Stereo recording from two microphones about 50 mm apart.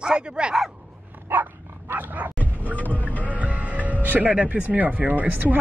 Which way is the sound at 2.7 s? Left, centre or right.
Left.